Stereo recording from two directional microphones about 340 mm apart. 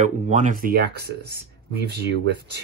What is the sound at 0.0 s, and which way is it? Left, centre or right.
Speech, right.